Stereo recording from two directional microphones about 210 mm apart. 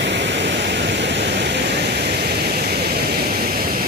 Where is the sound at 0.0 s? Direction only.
55° right (ahead or behind).